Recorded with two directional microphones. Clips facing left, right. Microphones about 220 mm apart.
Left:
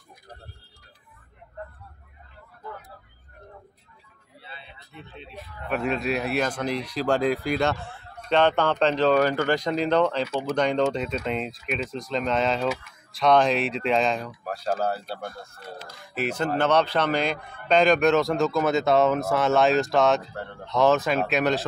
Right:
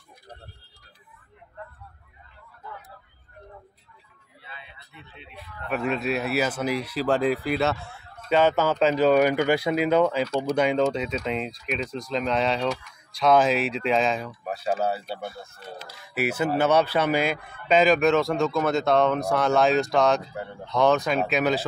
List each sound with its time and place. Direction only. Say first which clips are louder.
4.5 s a sound: even; 35° left (ahead or behind)
5.1 s speech: left 4 dB; 35° left (ahead or behind)
5.7 s speech: even; centre (ahead or behind)